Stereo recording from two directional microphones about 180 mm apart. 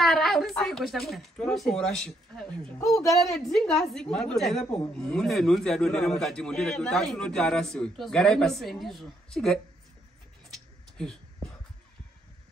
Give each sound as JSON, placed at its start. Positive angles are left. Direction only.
{"t": 0.0, "sound": "a man's voice", "side_deg": 0}
{"t": 2.8, "sound": "a woman's voice", "side_deg": 15}
{"t": 3.3, "sound": "a man's voice", "side_deg": 0}
{"t": 10.5, "sound": "a sound", "side_deg": 5}